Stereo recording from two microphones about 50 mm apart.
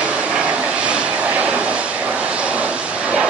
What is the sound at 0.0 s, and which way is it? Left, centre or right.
Vehicle, right.